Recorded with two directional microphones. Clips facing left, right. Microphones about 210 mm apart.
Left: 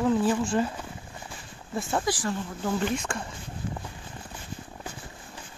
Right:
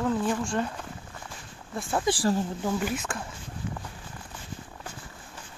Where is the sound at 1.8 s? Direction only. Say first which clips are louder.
Left 1 dB; centre (ahead or behind).